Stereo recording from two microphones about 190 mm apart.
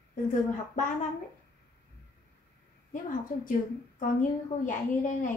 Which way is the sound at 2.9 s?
45° left (ahead or behind).